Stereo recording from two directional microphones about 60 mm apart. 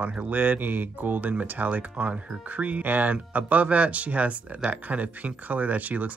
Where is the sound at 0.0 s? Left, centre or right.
Right.